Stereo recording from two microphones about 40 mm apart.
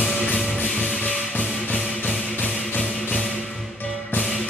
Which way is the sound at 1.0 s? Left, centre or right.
Left.